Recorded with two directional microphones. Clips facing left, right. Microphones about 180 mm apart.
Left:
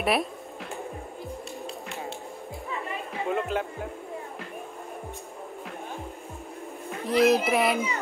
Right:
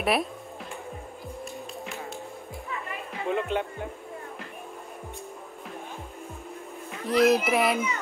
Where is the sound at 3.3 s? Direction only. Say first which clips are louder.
Right 1 dB; centre (ahead or behind).